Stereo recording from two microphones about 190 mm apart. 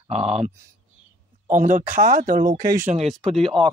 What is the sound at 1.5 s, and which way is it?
Speech, 40° right (ahead or behind).